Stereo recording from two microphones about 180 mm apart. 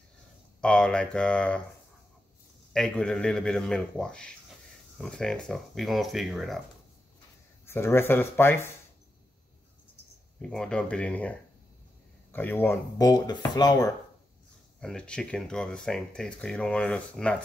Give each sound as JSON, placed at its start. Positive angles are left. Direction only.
{"t": 0.6, "sound": "speech", "side_deg": 5}
{"t": 2.7, "sound": "speech", "side_deg": 5}
{"t": 7.6, "sound": "speech", "side_deg": 15}
{"t": 10.4, "sound": "speech", "side_deg": 5}
{"t": 14.8, "sound": "speech", "side_deg": 5}